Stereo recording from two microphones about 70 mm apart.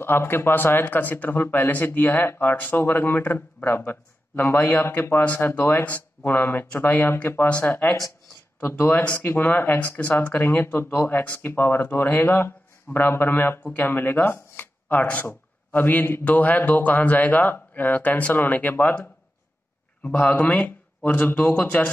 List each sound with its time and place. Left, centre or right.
0.0 s speech: left